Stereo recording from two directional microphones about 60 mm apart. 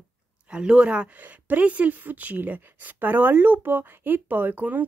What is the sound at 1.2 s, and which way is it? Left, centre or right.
A woman's voice, right.